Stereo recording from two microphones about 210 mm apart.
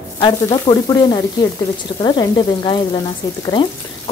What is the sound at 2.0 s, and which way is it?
A woman's voice, 20° left (ahead or behind).